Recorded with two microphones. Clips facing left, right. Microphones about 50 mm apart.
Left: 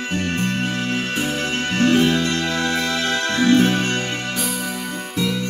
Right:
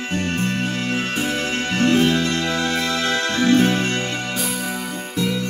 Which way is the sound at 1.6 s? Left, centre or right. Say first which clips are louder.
Left 1 dB; left.